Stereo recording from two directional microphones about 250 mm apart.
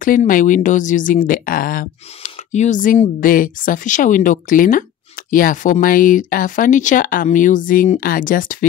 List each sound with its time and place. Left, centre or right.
0.0 s speech: left